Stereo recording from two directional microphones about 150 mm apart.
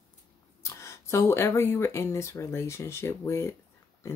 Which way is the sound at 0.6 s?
20° left (ahead or behind).